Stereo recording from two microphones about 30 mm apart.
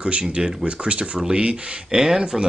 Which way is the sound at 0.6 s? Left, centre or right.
Right.